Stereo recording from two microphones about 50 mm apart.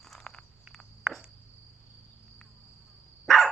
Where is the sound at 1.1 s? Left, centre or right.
Right.